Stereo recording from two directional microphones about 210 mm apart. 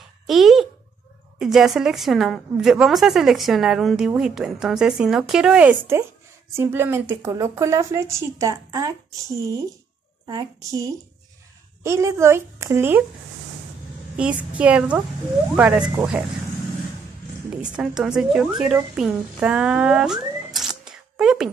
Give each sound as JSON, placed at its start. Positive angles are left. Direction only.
{"t": 0.3, "sound": "a child's voice", "side_deg": 0}
{"t": 10.2, "sound": "a woman's voice", "side_deg": -15}
{"t": 14.1, "sound": "a woman's voice", "side_deg": -5}
{"t": 17.7, "sound": "a woman's voice", "side_deg": -5}